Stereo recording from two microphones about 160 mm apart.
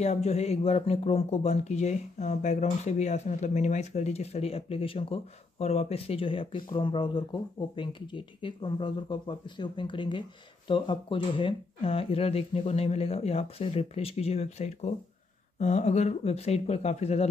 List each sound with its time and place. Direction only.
0.0 s speech: 45° left (ahead or behind)